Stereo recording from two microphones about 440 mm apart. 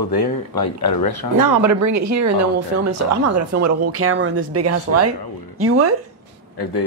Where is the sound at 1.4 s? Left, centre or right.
Right.